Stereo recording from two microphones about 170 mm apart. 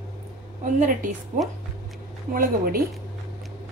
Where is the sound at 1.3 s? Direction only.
45° right (ahead or behind).